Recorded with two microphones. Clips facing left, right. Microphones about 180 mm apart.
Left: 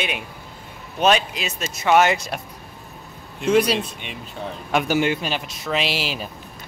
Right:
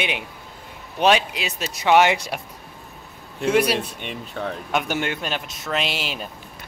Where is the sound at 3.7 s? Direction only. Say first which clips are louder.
Even; 55° right (ahead or behind).